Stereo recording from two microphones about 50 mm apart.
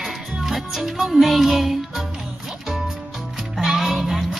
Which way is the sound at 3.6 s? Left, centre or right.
Centre.